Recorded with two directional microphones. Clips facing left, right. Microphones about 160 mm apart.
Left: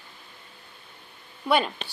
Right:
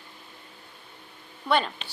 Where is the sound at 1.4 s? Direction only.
10° left (ahead or behind).